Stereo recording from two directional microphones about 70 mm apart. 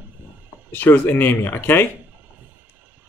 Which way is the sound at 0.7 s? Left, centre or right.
Left.